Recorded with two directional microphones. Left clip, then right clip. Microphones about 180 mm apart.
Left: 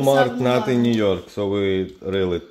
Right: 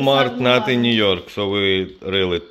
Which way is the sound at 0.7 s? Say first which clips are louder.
Right 2 dB; 10° left (ahead or behind).